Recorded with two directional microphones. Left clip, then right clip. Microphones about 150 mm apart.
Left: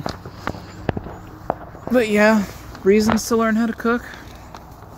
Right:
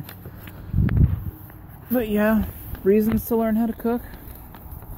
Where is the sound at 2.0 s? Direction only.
10° left (ahead or behind).